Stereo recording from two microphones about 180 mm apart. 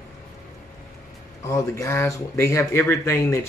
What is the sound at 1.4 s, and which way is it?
Speech, 15° left (ahead or behind).